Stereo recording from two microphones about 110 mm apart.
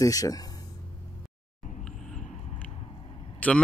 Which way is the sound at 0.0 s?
35° left (ahead or behind).